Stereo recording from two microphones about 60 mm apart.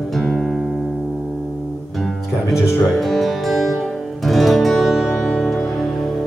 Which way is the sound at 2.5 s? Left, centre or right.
Centre.